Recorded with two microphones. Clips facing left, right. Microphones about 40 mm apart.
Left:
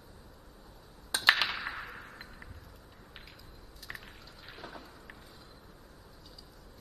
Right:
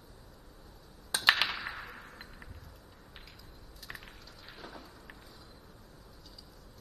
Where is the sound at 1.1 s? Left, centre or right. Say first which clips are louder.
Left 1 dB; centre.